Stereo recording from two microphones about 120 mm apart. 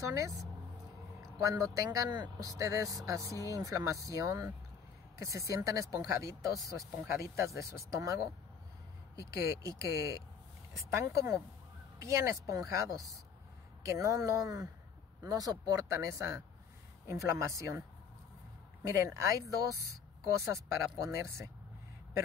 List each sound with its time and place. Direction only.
0.1 s speech: 30° right (ahead or behind)
18.9 s speech: 25° right (ahead or behind)